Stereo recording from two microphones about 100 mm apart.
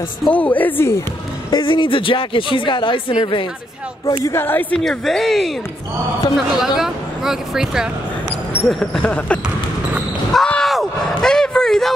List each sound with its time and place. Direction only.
0.3 s a woman's voice: 15° left (ahead or behind)
1.5 s speech: 55° left (ahead or behind)
4.2 s a woman's voice: 25° left (ahead or behind)
4.7 s speech: 5° left (ahead or behind)
10.3 s a sound: 5° left (ahead or behind)